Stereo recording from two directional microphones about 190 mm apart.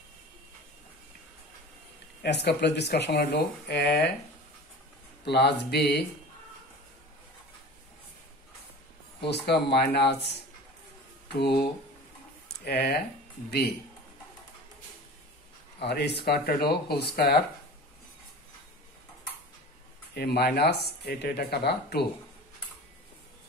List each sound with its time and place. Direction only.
2.2 s speech: 65° left (ahead or behind)
5.2 s speech: 60° left (ahead or behind)
9.3 s speech: 60° left (ahead or behind)
15.8 s speech: 60° left (ahead or behind)
20.2 s speech: 55° left (ahead or behind)